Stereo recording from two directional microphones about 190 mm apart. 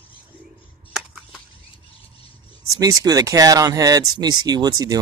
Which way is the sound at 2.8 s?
20° right (ahead or behind).